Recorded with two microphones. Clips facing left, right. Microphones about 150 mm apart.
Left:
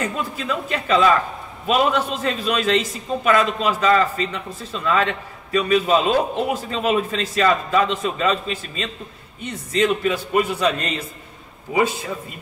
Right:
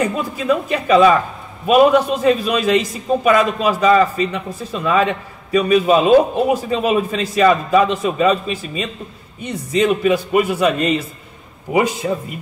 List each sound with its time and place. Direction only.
0.0 s a man's voice: 10° right (ahead or behind)